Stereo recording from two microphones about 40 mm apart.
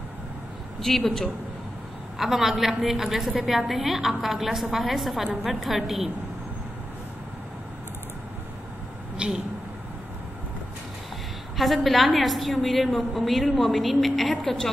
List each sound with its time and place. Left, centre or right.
0.7 s a man's voice: centre
2.1 s a woman's voice: centre
9.1 s speech: right
11.5 s a woman's voice: centre